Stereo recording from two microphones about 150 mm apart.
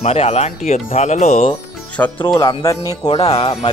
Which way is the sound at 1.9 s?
10° left (ahead or behind).